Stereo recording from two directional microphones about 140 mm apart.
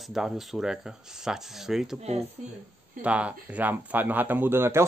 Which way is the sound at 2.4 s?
55° right (ahead or behind).